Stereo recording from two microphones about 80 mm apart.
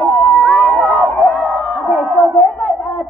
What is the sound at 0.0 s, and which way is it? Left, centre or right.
Crowd, centre.